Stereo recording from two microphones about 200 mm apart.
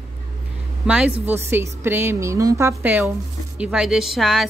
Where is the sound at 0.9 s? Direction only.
5° right (ahead or behind).